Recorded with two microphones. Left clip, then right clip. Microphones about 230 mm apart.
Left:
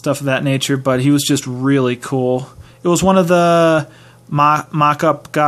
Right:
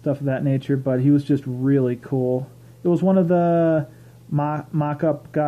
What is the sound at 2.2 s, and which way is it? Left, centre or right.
Speech, left.